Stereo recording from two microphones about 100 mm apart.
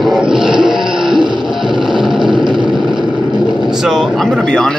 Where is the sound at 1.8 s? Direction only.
5° right (ahead or behind).